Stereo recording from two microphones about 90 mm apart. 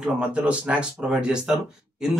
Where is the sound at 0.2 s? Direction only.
15° right (ahead or behind).